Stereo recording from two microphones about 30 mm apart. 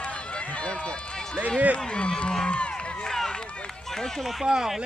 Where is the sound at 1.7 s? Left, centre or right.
Left.